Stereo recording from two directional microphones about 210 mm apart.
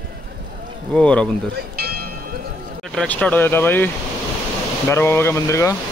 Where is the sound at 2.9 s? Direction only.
5° left (ahead or behind).